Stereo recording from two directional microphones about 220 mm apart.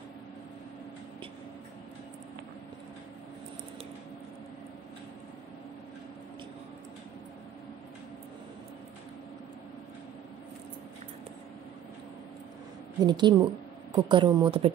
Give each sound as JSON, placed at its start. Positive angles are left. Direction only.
{"t": 13.0, "sound": "speech", "side_deg": -20}